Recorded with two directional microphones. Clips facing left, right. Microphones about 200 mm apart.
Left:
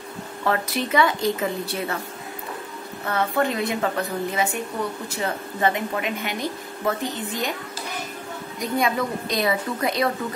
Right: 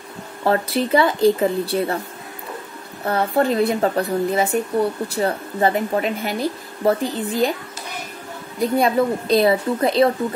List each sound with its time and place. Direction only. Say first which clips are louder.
0.4 s speech: right 5 dB; 30° right (ahead or behind)
3.1 s speech: right 5 dB; 35° right (ahead or behind)
8.5 s speech: right 6 dB; 30° right (ahead or behind)